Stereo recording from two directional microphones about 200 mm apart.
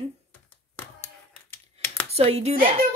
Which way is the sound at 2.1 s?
30° right (ahead or behind).